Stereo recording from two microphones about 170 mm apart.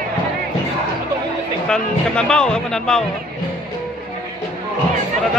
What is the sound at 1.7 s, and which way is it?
Speech, 5° left (ahead or behind).